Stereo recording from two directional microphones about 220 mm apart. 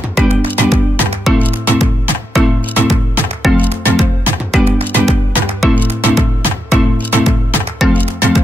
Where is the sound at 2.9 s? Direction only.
Centre (ahead or behind).